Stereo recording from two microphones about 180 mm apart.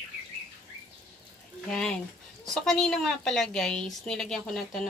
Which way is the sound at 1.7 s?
5° left (ahead or behind).